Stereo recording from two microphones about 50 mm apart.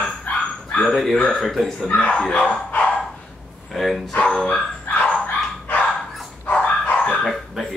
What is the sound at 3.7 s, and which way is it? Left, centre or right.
Music, centre.